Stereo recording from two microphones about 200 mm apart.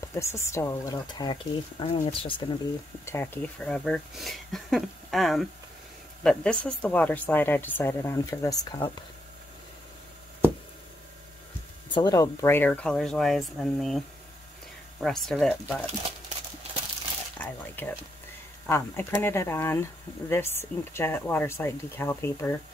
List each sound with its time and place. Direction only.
0.0 s a sound: 15° left (ahead or behind)
0.5 s speech: 15° left (ahead or behind)
3.1 s speech: 10° left (ahead or behind)
11.9 s speech: 20° left (ahead or behind); by 15.8 s centre (ahead or behind)
17.4 s speech: 10° left (ahead or behind)